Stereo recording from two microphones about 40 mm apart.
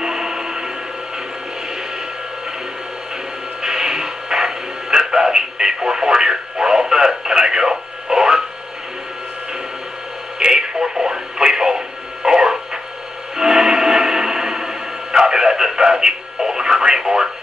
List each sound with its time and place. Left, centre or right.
0.0 s music: centre
3.6 s radio: centre
10.4 s radio: centre
13.4 s music: centre